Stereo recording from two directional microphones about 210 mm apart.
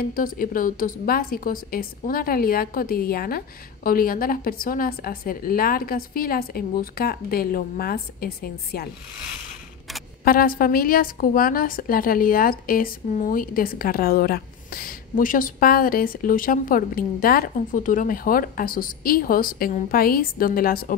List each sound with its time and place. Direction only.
0.0 s a woman's voice: 40° left (ahead or behind)
10.2 s a woman's voice: 45° left (ahead or behind)